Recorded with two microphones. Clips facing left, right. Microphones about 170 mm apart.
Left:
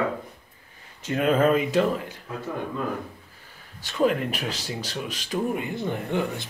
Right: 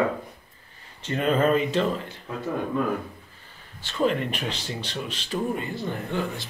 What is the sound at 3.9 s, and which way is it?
Speech, 10° left (ahead or behind).